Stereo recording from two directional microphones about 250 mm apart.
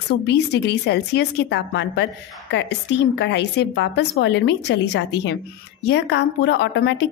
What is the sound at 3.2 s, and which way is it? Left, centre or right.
A woman's voice, left.